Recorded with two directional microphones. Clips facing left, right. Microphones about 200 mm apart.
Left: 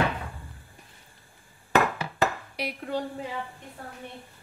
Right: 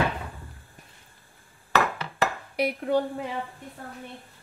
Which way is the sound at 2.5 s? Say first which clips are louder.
Right 7 dB; 55° right (ahead or behind).